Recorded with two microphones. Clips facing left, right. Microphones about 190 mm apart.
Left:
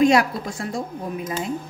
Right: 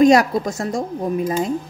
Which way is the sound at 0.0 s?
40° right (ahead or behind).